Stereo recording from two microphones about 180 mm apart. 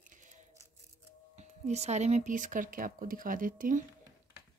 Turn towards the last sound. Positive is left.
turn(degrees=-50)  # may be behind; listen again after turning